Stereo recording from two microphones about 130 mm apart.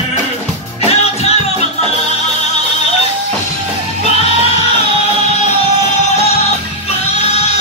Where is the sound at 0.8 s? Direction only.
55° left (ahead or behind).